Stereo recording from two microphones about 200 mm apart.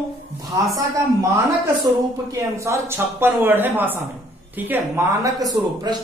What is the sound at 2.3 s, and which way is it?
A man's voice, 15° right (ahead or behind).